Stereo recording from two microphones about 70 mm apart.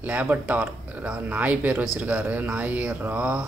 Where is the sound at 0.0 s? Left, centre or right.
Right.